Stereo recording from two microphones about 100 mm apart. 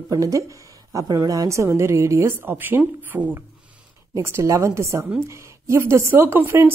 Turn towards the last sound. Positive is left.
turn(degrees=-25)  # may be behind; listen again after turning